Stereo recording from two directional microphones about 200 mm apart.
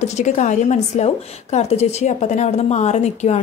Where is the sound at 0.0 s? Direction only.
35° left (ahead or behind).